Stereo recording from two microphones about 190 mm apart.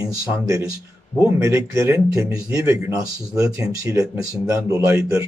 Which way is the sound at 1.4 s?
15° right (ahead or behind).